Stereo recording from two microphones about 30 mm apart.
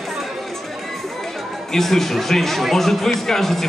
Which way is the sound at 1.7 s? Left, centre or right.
Centre.